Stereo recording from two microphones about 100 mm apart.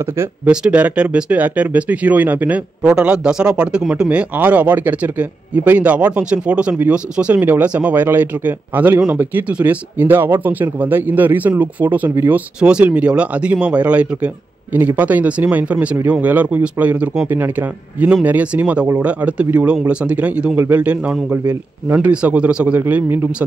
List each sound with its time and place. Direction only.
0.5 s a man's voice: 15° right (ahead or behind)